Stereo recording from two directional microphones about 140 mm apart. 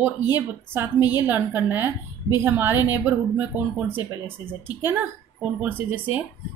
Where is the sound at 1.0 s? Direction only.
30° left (ahead or behind).